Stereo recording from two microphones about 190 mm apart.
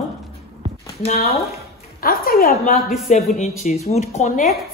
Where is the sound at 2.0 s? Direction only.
50° left (ahead or behind).